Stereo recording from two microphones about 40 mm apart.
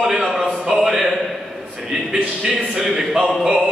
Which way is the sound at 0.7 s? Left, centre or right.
Centre.